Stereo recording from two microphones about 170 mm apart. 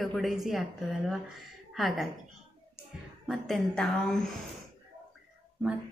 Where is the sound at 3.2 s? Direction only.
Centre (ahead or behind).